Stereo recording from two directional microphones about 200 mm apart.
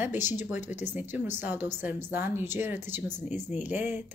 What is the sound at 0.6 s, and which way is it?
Speech, 35° left (ahead or behind).